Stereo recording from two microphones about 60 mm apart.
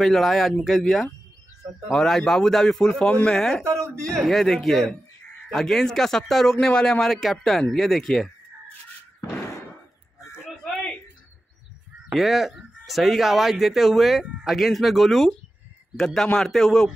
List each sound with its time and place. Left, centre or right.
0.0 s a man's voice: centre
3.6 s speech: right
4.0 s a man's voice: centre
9.2 s slam: left
12.1 s a man's voice: centre